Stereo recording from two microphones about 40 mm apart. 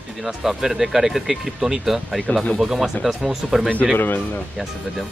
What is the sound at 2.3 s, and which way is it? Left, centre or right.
Speech, left.